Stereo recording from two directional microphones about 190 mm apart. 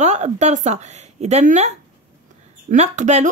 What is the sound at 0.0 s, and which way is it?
Speech, 35° right (ahead or behind).